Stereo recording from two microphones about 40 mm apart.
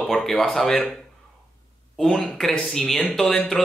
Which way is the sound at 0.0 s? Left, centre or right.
Centre.